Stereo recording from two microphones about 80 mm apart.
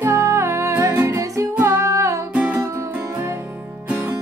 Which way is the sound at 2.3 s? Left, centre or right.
Centre.